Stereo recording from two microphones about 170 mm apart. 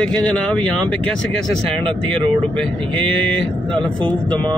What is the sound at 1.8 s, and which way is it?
Speech, 30° right (ahead or behind).